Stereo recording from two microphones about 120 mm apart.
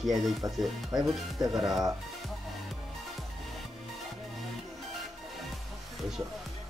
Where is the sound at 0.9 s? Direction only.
30° right (ahead or behind).